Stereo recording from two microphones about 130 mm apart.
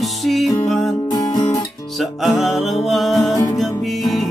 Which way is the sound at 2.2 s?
Centre (ahead or behind).